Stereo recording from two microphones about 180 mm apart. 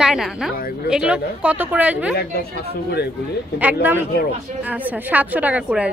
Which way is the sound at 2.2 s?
60° left (ahead or behind).